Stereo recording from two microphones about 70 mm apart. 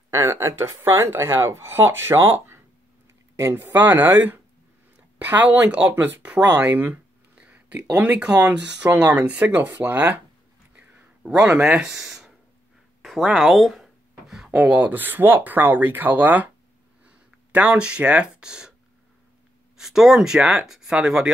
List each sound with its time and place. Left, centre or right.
0.1 s speech: right
6.6 s a sound: right
8.2 s speech: centre
11.2 s speech: centre
13.0 s a sound: centre
14.6 s speech: right
19.8 s speech: centre